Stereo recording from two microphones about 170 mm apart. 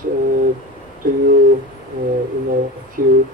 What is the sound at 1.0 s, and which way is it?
Speech, 55° right (ahead or behind).